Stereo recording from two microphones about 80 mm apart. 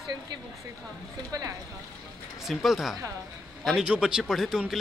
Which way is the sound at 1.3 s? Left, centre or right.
Right.